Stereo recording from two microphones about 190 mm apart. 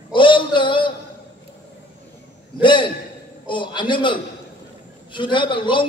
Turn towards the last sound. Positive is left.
turn(degrees=25)  # may be behind; listen again after turning